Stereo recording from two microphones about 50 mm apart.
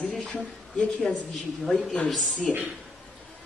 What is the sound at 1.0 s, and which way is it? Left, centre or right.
Speech, centre.